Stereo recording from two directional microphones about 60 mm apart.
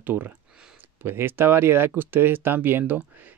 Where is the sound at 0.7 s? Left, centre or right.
Right.